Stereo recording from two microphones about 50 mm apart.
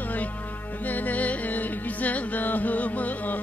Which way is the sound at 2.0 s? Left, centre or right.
Left.